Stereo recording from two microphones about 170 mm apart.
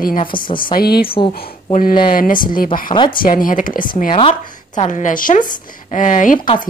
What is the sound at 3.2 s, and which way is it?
Speech, 55° left (ahead or behind).